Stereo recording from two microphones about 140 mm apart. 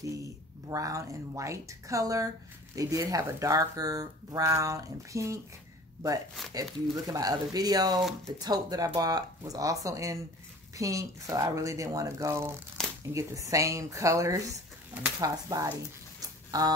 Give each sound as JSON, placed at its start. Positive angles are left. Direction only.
{"t": 0.0, "sound": "speech", "side_deg": -25}
{"t": 7.1, "sound": "speech", "side_deg": -25}
{"t": 12.8, "sound": "shuffling cards", "side_deg": 5}
{"t": 13.1, "sound": "speech", "side_deg": -25}
{"t": 16.2, "sound": "a sound", "side_deg": -25}